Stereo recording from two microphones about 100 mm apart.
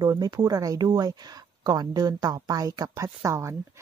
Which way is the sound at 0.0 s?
40° right (ahead or behind).